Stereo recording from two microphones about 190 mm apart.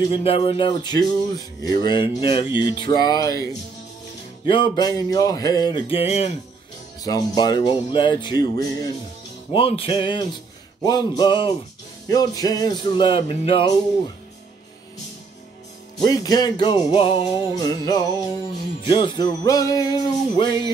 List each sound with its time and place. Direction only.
0.0 s speech: 30° left (ahead or behind)
4.5 s speech: 25° left (ahead or behind)
7.0 s speech: 20° left (ahead or behind)
16.1 s speech: 20° left (ahead or behind)
17.3 s speech: 20° left (ahead or behind)